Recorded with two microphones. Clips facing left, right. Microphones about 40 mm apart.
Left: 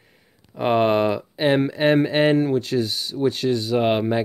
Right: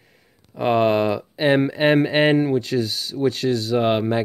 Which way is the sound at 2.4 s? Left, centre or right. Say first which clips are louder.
Even; centre.